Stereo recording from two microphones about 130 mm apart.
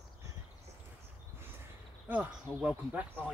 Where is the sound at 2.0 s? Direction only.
10° right (ahead or behind).